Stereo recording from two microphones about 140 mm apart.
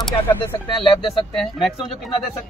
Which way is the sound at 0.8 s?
35° left (ahead or behind).